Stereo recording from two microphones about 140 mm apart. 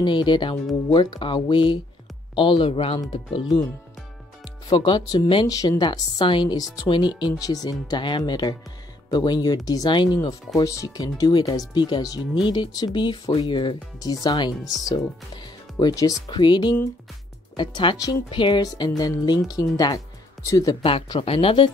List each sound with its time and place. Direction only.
0.0 s speech: 35° left (ahead or behind)
4.6 s speech: 30° left (ahead or behind)
20.8 s speech: 40° left (ahead or behind)